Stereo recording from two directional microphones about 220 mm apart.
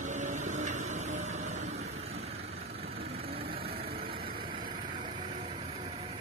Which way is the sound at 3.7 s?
45° right (ahead or behind).